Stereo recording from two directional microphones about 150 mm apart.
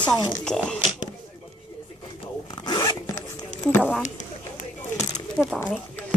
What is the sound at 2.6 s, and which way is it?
Zipper, 30° left (ahead or behind).